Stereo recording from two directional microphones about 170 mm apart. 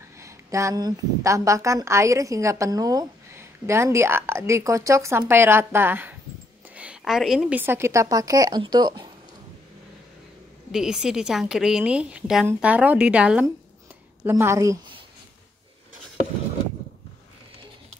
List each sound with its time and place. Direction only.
0.2 s a woman's voice: 15° right (ahead or behind)
10.7 s a woman's voice: 5° right (ahead or behind)